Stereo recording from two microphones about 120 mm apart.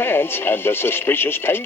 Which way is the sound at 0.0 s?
20° left (ahead or behind).